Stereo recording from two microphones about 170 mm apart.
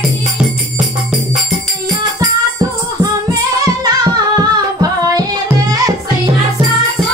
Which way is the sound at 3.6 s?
25° right (ahead or behind).